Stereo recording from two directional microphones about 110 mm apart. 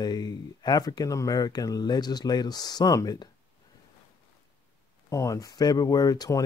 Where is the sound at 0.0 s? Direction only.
40° left (ahead or behind).